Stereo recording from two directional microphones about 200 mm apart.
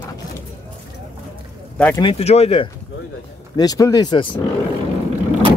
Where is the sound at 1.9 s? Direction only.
30° left (ahead or behind).